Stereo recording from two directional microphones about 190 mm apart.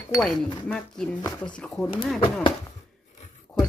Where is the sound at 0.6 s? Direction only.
5° left (ahead or behind).